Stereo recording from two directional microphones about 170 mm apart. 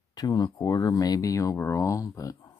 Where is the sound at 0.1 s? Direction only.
25° left (ahead or behind).